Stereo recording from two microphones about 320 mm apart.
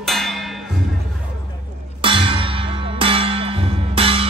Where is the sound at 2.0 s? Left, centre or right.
Centre.